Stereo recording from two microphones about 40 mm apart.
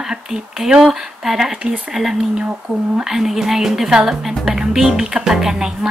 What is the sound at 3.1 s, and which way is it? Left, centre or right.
Speech, centre.